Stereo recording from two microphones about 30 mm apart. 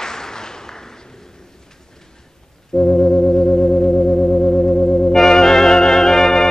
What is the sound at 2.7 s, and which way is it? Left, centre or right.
Organ, left.